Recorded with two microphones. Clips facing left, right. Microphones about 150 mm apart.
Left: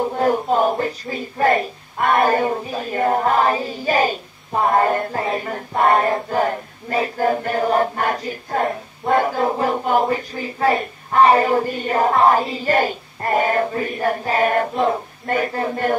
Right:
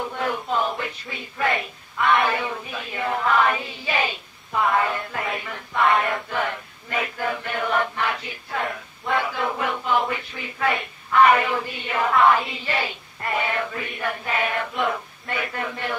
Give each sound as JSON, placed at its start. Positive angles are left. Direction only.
{"t": 0.0, "sound": "chant", "side_deg": 40}
{"t": 14.8, "sound": "chant", "side_deg": 35}